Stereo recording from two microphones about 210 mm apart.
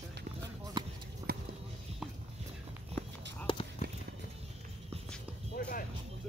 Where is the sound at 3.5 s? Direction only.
25° left (ahead or behind).